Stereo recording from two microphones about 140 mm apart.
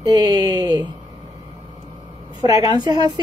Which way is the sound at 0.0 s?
30° right (ahead or behind).